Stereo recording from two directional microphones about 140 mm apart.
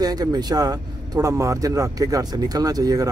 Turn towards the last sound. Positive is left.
turn(degrees=-25)  # may be behind; listen again after turning